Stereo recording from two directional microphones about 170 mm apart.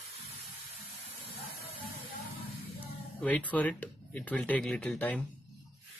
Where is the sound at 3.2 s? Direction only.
10° left (ahead or behind).